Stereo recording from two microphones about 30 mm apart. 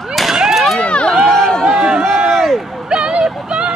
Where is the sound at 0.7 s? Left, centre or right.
Left.